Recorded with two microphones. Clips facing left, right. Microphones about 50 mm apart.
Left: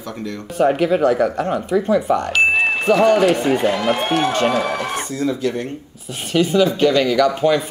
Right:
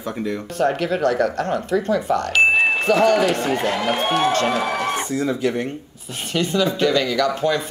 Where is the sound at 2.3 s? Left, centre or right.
Centre.